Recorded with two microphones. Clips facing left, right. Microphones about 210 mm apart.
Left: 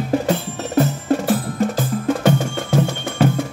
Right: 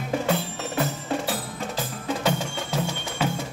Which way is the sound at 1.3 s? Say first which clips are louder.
Left 11 dB; 50° left (ahead or behind).